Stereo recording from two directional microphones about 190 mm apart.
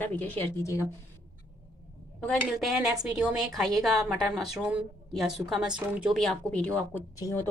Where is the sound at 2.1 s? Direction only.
Centre (ahead or behind).